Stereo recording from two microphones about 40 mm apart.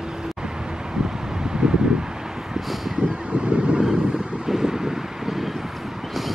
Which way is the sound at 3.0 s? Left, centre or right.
Right.